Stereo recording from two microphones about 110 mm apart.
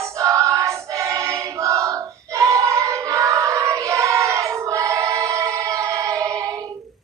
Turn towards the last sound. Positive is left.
turn(degrees=-30)  # may be behind; listen again after turning